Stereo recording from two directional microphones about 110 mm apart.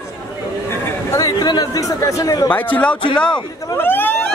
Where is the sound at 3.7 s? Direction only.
20° left (ahead or behind).